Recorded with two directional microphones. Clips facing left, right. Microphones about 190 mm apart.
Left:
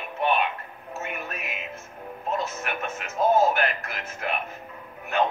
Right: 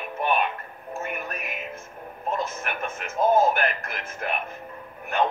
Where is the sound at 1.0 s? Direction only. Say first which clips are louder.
Even; 55° right (ahead or behind).